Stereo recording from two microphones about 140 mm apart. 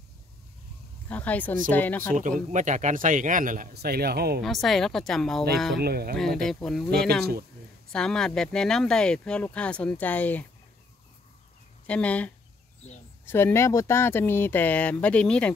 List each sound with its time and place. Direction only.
1.0 s speech: 10° left (ahead or behind)
2.0 s a man's voice: 70° right (ahead or behind); by 4.2 s 90° right
4.4 s speech: centre (ahead or behind)
5.9 s speech: 90° right
6.1 s speech: 5° left (ahead or behind)
11.9 s speech: 10° left (ahead or behind)